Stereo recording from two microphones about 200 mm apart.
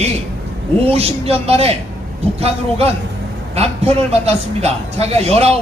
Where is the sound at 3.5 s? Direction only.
30° right (ahead or behind).